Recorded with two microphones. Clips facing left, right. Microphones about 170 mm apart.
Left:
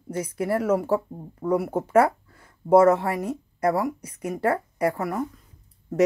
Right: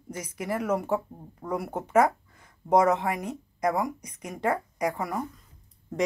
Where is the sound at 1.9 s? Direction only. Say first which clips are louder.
Left 2 dB; 10° left (ahead or behind).